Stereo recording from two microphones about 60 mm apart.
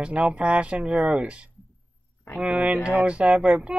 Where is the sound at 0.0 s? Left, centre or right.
Centre.